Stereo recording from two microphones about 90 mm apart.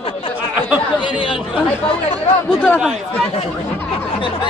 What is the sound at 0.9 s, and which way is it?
Chatter, 65° left (ahead or behind).